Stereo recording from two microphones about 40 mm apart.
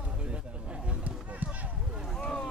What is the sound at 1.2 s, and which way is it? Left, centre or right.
Basketball bounce, right.